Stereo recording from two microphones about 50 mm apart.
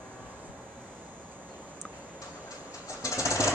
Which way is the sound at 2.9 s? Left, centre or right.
Left.